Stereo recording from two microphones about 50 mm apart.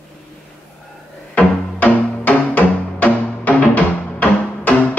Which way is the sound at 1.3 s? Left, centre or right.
Left.